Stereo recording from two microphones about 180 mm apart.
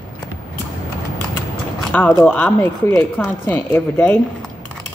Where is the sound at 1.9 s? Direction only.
10° left (ahead or behind).